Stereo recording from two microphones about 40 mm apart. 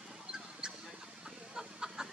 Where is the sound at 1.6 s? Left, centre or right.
Centre.